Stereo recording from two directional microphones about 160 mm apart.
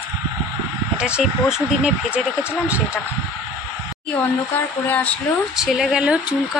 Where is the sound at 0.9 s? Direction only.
5° right (ahead or behind).